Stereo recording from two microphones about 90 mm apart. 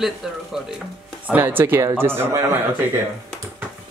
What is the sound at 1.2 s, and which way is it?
Speech, 20° right (ahead or behind).